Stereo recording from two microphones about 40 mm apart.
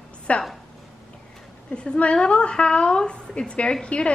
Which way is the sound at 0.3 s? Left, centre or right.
Left.